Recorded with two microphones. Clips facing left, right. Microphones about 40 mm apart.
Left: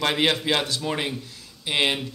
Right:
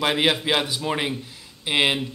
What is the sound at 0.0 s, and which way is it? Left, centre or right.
Speech, centre.